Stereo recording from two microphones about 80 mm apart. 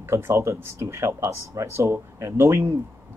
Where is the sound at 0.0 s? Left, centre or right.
Right.